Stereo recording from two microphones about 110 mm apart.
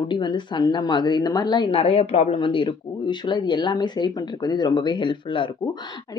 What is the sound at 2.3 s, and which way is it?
Speech, 50° left (ahead or behind).